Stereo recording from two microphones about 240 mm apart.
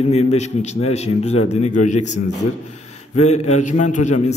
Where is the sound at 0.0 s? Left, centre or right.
Left.